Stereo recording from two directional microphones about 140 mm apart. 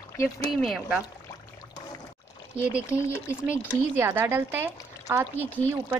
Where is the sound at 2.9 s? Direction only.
20° left (ahead or behind).